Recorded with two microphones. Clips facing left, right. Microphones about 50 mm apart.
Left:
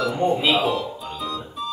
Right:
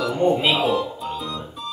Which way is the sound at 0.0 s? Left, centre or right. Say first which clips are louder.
Right 1 dB; centre.